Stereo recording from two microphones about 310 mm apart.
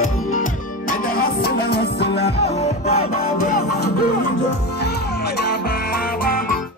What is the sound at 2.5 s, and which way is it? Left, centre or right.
Music, centre.